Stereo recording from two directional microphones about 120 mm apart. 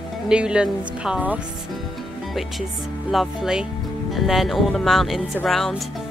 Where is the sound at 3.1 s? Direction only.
Centre (ahead or behind).